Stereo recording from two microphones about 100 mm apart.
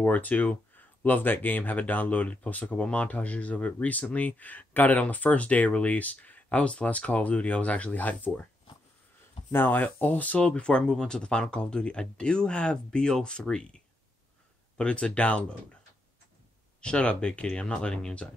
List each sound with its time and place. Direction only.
0.0 s speech: 15° left (ahead or behind)
9.5 s speech: 20° left (ahead or behind)
16.8 s speech: 10° left (ahead or behind)